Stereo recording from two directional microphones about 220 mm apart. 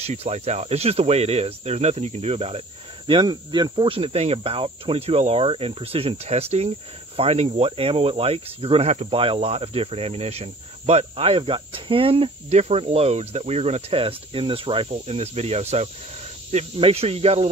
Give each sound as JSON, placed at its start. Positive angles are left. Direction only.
{"t": 0.0, "sound": "speech", "side_deg": -30}